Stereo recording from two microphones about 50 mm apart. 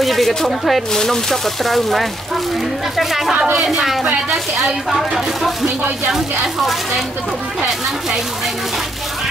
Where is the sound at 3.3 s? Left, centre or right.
Right.